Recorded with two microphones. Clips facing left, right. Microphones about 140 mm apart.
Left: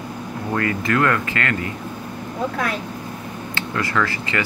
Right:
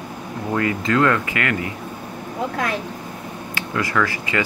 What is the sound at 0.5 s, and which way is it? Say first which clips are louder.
Speech: right 1 dB; 20° right (ahead or behind).